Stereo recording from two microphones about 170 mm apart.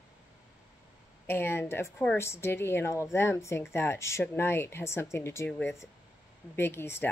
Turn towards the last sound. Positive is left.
turn(degrees=15)  # may be behind; listen again after turning